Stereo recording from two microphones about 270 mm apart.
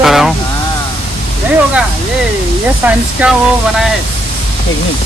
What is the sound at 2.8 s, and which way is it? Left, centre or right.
Speech, centre.